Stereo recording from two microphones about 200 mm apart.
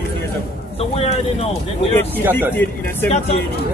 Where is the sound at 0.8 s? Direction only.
30° left (ahead or behind).